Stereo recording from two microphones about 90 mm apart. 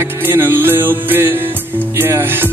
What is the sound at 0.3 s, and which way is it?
Music, 25° right (ahead or behind).